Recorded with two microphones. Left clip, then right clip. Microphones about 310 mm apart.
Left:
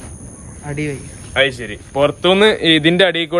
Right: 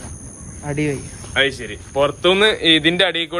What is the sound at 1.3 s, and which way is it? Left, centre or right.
Speech, left.